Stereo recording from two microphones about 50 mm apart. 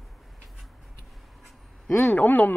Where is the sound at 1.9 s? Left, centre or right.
Left.